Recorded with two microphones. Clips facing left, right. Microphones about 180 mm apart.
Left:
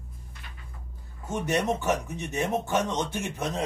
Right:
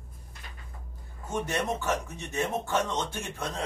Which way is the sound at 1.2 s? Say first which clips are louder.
Left 3 dB; 15° left (ahead or behind).